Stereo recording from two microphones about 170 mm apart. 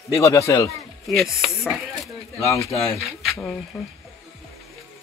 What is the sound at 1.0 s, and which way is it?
Speech, centre (ahead or behind).